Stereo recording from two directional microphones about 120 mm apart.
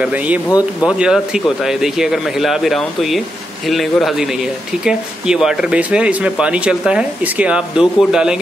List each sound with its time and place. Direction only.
0.0 s speech: 10° right (ahead or behind)
0.5 s speech: 30° left (ahead or behind)
0.8 s speech: 5° right (ahead or behind)